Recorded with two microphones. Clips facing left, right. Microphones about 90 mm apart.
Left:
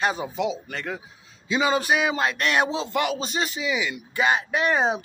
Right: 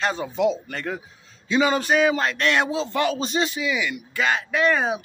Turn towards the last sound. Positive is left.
turn(degrees=20)  # may be behind; listen again after turning